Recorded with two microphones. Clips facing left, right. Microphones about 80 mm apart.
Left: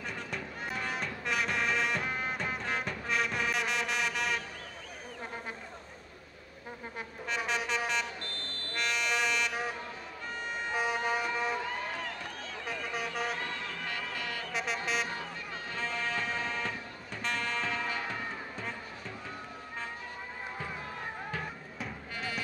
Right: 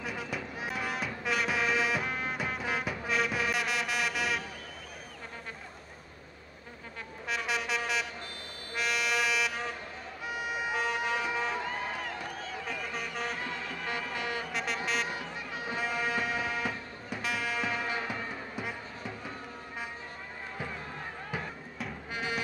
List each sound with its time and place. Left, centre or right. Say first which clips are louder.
0.0 s music: right 2 dB; centre
7.2 s music: even; centre
11.0 s a sound: even; centre
13.8 s music: right 5 dB; centre
14.5 s music: even; centre
15.0 s music: right 1 dB; centre
22.1 s music: right 4 dB; centre